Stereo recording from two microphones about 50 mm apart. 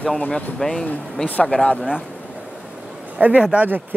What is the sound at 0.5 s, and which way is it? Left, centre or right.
Speech, centre.